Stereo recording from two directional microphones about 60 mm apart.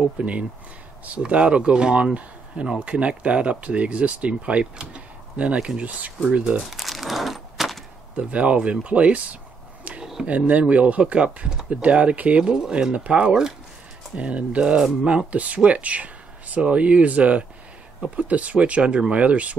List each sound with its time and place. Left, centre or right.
0.2 s speech: right
6.7 s a sound: centre
8.2 s speech: right